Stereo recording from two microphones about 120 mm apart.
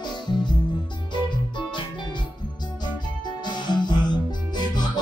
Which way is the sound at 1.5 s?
40° left (ahead or behind).